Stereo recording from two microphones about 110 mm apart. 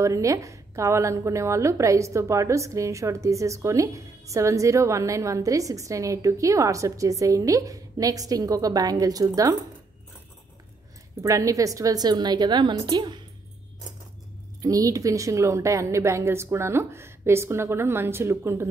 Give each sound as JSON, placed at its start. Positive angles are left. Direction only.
{"t": 0.0, "sound": "a woman's voice", "side_deg": -30}
{"t": 11.2, "sound": "a woman's voice", "side_deg": -30}
{"t": 14.6, "sound": "a woman's voice", "side_deg": -30}